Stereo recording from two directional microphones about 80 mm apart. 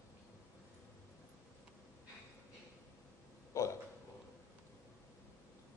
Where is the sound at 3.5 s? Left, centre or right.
Left.